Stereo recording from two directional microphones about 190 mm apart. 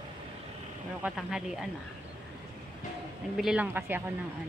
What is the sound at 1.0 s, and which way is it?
Speech, 5° right (ahead or behind).